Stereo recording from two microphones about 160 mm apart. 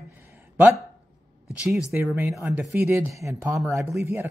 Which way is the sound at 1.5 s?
10° right (ahead or behind).